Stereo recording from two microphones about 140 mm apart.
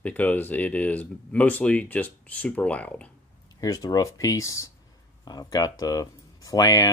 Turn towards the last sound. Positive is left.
turn(degrees=25)  # may be behind; listen again after turning